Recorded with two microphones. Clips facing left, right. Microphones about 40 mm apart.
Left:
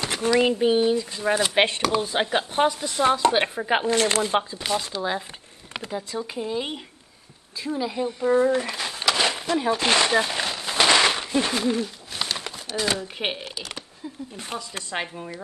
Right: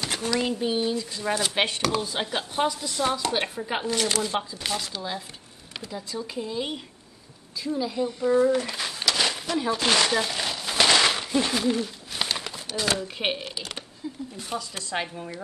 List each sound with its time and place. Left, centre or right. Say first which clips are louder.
0.0 s speech: left 6 dB; left
2.0 s speech: left 5 dB; left
4.9 s speech: left 6 dB; centre
5.9 s speech: left 2 dB; left
8.6 s a sound: left 3 dB; centre
12.2 s bird: even; centre
12.4 s a sound: left 1 dB; centre
12.9 s speech: even; centre
14.3 s speech: left 2 dB; left
15.0 s speech: even; centre